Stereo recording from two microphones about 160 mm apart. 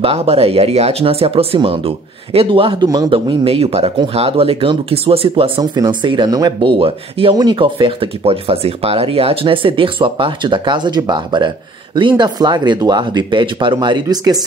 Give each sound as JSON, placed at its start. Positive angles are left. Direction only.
{"t": 0.0, "sound": "speech", "side_deg": -40}